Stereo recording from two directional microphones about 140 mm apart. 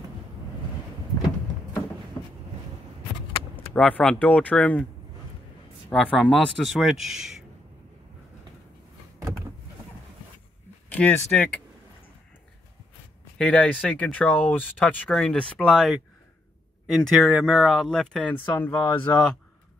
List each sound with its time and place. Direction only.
2.2 s vehicle: 25° left (ahead or behind)
3.5 s speech: 10° left (ahead or behind)
5.9 s speech: 5° left (ahead or behind)
10.9 s speech: 10° left (ahead or behind)
13.4 s speech: 5° left (ahead or behind)
17.0 s speech: centre (ahead or behind)